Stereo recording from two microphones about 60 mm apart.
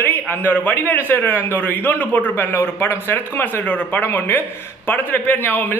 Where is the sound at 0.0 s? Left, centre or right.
Left.